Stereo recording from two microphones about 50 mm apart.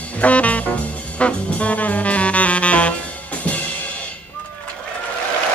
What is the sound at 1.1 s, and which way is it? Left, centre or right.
Saxophone, left.